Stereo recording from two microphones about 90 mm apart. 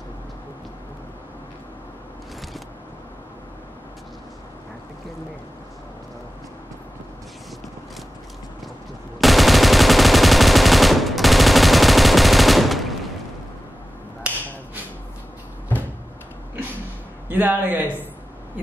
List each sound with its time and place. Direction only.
9.2 s gunshot: centre (ahead or behind)
17.3 s a man's voice: 20° right (ahead or behind)